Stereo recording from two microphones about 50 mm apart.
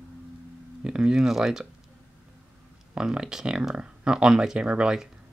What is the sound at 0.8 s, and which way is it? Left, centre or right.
Speech, centre.